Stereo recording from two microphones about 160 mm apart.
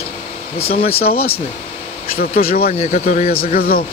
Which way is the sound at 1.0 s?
70° left (ahead or behind).